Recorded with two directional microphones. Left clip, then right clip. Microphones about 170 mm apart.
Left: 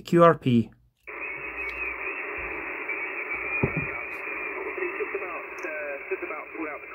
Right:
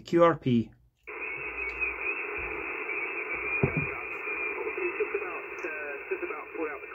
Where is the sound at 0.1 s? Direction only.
90° left.